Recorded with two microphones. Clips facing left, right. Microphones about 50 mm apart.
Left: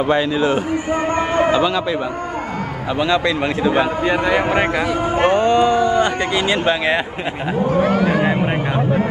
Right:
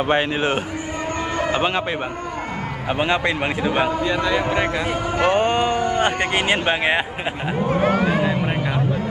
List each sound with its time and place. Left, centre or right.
0.1 s speech: right
3.0 s speech: right
4.0 s a man's voice: left
5.3 s speech: right
8.3 s speech: left